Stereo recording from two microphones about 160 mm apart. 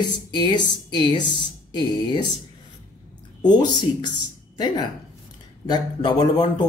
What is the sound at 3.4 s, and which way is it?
Speech, 25° left (ahead or behind).